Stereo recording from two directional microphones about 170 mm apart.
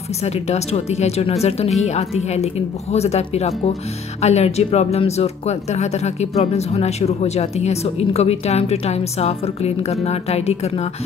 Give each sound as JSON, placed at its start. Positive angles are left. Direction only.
{"t": 0.2, "sound": "speech", "side_deg": 40}